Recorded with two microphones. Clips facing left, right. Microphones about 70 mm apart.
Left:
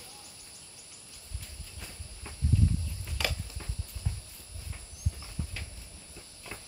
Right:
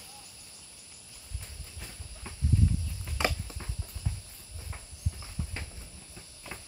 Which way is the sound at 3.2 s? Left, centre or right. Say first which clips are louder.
Right 4 dB; right.